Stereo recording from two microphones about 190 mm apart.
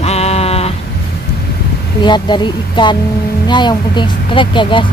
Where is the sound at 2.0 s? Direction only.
25° left (ahead or behind).